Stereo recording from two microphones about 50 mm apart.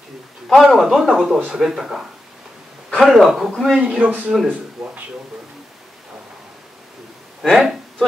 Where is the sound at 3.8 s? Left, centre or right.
Right.